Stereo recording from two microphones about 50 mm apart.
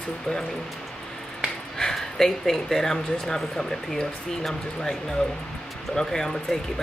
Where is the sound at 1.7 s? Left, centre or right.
Centre.